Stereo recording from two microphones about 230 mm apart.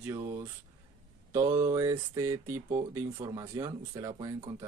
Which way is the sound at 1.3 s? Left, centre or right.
Centre.